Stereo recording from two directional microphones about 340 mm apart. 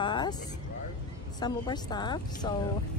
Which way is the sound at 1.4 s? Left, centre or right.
Centre.